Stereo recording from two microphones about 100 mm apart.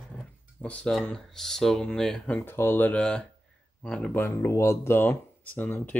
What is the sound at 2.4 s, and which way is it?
Speech, 25° left (ahead or behind).